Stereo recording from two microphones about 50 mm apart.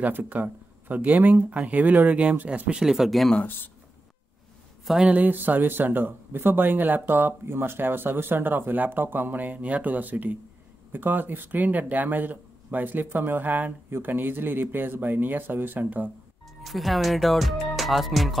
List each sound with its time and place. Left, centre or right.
0.0 s speech: right
2.8 s speech: centre
4.8 s a man's voice: centre
5.1 s speech: right
16.6 s speech: centre